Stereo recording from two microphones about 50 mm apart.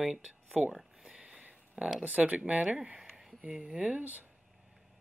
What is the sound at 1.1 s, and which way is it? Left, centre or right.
Sniff, right.